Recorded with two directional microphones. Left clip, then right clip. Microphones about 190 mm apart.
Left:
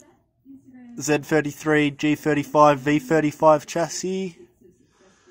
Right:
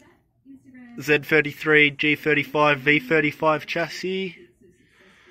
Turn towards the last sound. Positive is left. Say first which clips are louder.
# even
turn(degrees=25)  # may be behind; listen again after turning